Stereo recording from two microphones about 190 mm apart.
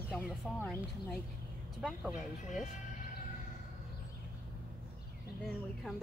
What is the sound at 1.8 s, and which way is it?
Speech, 5° right (ahead or behind).